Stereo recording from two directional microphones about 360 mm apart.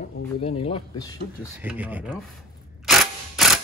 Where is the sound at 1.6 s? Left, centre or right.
Centre.